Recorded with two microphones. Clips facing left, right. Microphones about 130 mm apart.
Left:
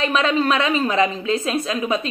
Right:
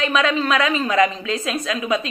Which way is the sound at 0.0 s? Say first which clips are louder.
Left 1 dB; 35° left (ahead or behind).